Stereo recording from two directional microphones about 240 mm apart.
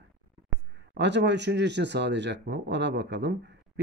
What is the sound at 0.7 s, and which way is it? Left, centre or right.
Speech, right.